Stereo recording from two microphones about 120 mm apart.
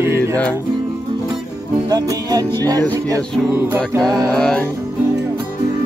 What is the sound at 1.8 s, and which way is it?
Music, 30° right (ahead or behind).